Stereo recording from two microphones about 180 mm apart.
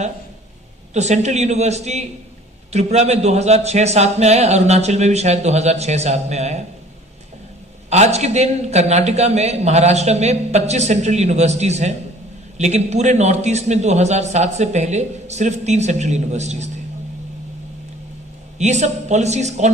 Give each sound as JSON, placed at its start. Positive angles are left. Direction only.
{"t": 0.9, "sound": "a man's voice", "side_deg": -40}
{"t": 7.9, "sound": "a man's voice", "side_deg": -40}
{"t": 18.6, "sound": "a man's voice", "side_deg": -40}